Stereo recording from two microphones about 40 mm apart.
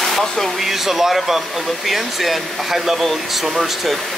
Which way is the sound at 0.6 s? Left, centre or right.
Centre.